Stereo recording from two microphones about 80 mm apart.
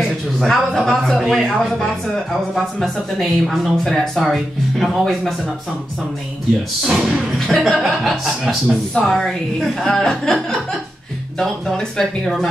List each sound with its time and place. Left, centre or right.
0.0 s speech: centre
6.8 s a woman's voice: centre